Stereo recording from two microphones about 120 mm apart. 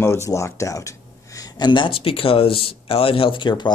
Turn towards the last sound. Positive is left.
turn(degrees=40)  # may be behind; listen again after turning